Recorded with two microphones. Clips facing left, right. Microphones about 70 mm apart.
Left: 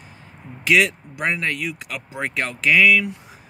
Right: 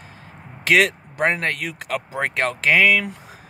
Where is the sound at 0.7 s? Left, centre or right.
Right.